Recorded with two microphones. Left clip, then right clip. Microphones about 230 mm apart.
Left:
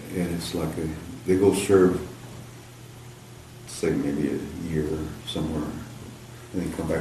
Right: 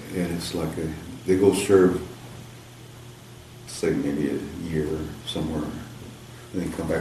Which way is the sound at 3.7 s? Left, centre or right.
Centre.